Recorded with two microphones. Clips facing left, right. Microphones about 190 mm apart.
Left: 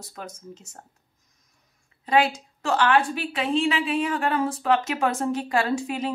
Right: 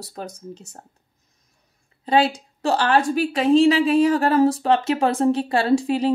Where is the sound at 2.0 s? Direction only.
30° right (ahead or behind).